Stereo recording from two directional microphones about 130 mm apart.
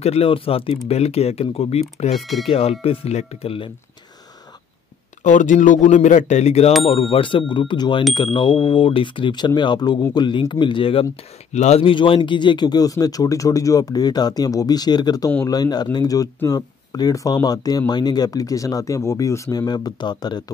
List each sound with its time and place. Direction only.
0.0 s speech: 50° left (ahead or behind)
2.1 s speech: centre (ahead or behind)
2.4 s speech: 50° left (ahead or behind)
5.2 s speech: 70° left (ahead or behind); by 6.7 s 55° left (ahead or behind)
6.8 s speech: 40° left (ahead or behind)
11.5 s speech: 60° left (ahead or behind)
11.8 s speech: 40° left (ahead or behind)